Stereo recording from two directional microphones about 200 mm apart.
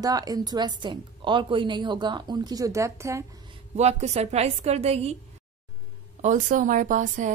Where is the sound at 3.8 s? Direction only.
35° right (ahead or behind).